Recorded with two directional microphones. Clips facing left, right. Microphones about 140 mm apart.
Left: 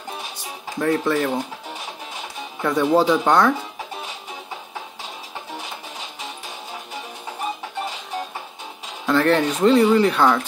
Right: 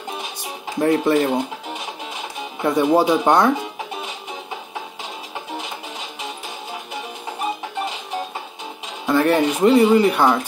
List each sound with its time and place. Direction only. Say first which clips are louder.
0.7 s speech: right 4 dB; 20° right (ahead or behind)
2.6 s speech: right 1 dB; 15° right (ahead or behind)
9.0 s speech: right 1 dB; 15° right (ahead or behind)